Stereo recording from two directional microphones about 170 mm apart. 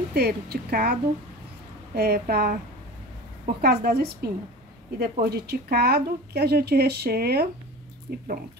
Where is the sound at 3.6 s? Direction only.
65° right (ahead or behind).